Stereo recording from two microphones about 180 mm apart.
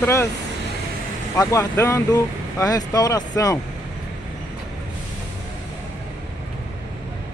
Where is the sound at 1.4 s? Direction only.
15° left (ahead or behind).